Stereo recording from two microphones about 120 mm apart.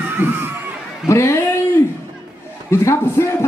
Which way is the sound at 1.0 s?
25° left (ahead or behind).